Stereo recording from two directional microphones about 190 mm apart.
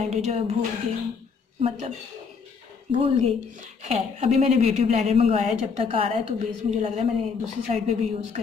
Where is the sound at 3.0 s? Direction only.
35° right (ahead or behind).